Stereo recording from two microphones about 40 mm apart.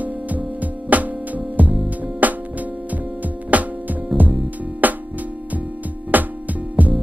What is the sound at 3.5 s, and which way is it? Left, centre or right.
Music, right.